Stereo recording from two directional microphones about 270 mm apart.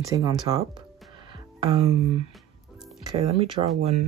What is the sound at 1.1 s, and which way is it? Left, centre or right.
Music, centre.